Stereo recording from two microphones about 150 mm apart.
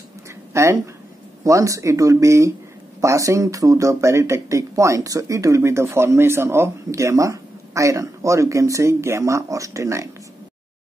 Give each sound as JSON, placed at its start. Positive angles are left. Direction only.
{"t": 0.5, "sound": "speech", "side_deg": -20}